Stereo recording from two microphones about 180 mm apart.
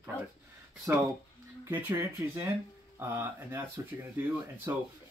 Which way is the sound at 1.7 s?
15° right (ahead or behind).